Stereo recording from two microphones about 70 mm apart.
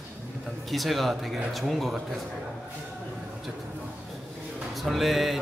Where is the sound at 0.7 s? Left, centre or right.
Centre.